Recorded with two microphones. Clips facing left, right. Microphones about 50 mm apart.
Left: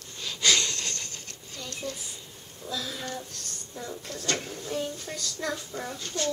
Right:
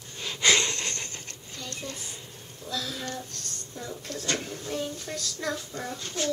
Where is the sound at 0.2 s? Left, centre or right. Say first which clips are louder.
Right 2 dB; right.